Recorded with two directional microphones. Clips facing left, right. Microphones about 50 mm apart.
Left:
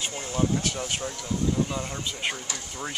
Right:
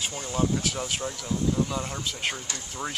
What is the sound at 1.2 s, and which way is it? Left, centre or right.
Speech, centre.